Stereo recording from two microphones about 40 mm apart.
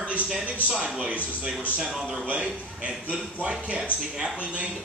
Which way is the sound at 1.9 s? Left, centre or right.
Centre.